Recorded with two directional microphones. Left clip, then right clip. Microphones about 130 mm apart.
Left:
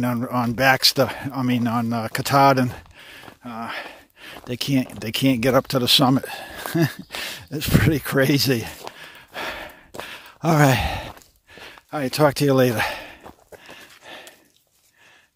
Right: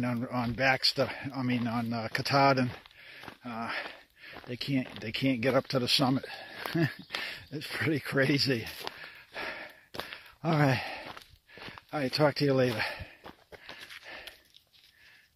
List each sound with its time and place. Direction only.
0.0 s speech: 35° left (ahead or behind)
3.4 s a sound: 35° left (ahead or behind)
4.5 s speech: 45° left (ahead or behind)
9.0 s a sound: 35° left (ahead or behind)
10.1 s speech: 40° left (ahead or behind)
13.7 s horse: 20° left (ahead or behind)